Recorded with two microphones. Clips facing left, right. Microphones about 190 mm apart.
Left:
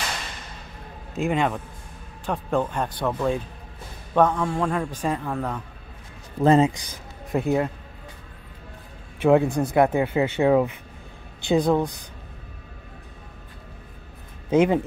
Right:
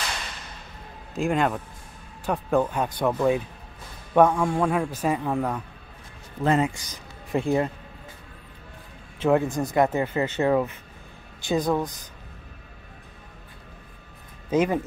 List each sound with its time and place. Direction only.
1.1 s a man's voice: centre (ahead or behind)
6.4 s speech: 30° left (ahead or behind)
7.3 s a man's voice: centre (ahead or behind)
9.2 s speech: 15° left (ahead or behind)
11.6 s speech: 30° left (ahead or behind)
14.5 s speech: 10° left (ahead or behind)